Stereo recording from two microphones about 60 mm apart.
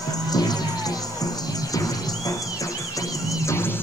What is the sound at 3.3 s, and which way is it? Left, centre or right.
Music, left.